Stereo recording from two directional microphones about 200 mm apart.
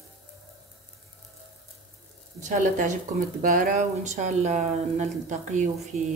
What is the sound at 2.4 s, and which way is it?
Speech, 40° right (ahead or behind).